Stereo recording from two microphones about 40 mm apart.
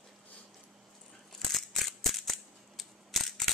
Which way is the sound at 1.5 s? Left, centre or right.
Centre.